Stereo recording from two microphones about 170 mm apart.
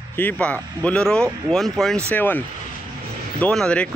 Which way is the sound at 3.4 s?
5° left (ahead or behind).